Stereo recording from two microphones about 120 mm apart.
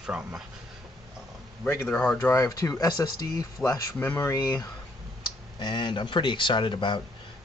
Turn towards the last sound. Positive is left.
turn(degrees=40)  # may be behind; listen again after turning